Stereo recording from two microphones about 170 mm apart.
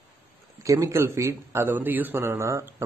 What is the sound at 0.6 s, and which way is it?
A man's voice, 20° right (ahead or behind).